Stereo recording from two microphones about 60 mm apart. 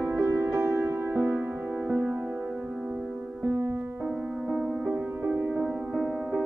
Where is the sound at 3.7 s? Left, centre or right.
Right.